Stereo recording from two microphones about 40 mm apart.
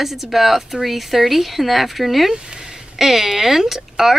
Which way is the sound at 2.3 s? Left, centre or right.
Centre.